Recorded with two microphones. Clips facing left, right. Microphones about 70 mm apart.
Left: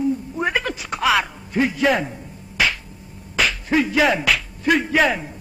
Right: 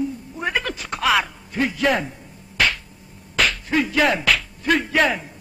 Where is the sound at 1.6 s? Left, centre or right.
Centre.